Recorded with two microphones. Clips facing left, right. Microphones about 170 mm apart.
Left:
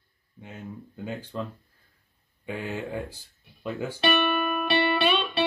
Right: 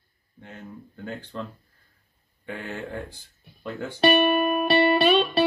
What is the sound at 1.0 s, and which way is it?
Speech, 15° left (ahead or behind).